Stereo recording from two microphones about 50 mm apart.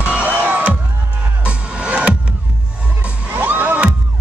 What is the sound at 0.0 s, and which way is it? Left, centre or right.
Music, right.